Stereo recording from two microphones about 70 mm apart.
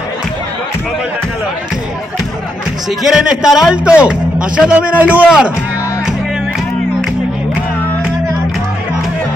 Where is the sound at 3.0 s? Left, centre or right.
Centre.